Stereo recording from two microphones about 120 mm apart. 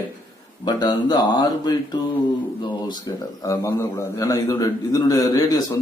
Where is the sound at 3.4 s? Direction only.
25° left (ahead or behind).